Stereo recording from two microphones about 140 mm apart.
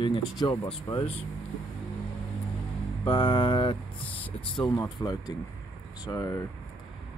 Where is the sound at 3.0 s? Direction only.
35° left (ahead or behind).